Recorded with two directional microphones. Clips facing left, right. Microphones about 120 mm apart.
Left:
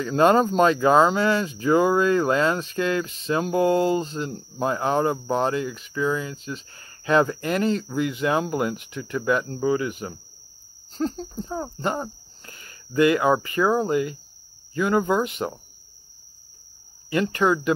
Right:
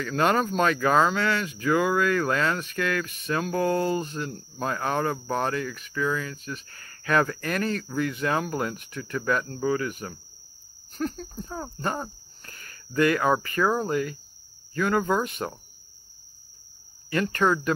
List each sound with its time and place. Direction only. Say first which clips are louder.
0.0 s speech: left 6 dB; 25° left (ahead or behind)
17.1 s speech: left 2 dB; 15° left (ahead or behind)